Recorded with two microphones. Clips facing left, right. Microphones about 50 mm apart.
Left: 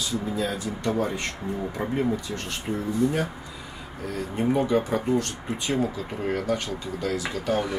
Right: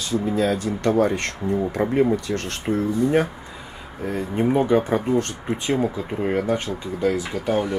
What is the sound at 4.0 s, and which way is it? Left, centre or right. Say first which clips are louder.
Speech: right 5 dB; right.